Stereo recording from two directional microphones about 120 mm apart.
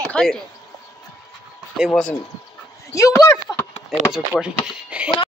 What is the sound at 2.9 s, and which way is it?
Speech, 25° left (ahead or behind).